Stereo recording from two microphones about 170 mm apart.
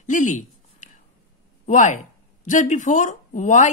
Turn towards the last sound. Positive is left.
turn(degrees=45)  # may be behind; listen again after turning